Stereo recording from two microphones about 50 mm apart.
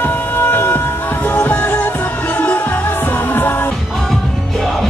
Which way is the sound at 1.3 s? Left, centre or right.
Left.